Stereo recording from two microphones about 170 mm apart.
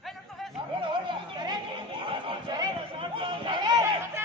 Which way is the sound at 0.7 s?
30° right (ahead or behind).